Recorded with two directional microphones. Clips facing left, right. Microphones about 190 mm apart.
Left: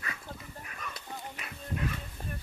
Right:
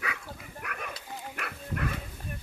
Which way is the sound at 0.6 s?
70° right (ahead or behind).